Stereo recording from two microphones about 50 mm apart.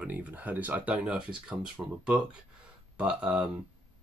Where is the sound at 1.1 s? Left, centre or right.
Centre.